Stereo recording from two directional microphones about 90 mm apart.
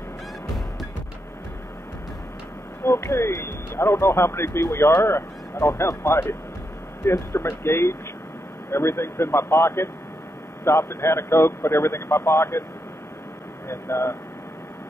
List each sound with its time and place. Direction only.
2.8 s a man's voice: 30° left (ahead or behind)
13.7 s a man's voice: 30° left (ahead or behind)